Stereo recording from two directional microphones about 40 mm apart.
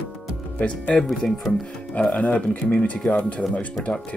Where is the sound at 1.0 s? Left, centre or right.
Centre.